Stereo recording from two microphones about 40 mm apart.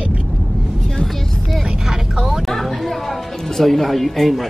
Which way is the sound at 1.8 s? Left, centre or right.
Centre.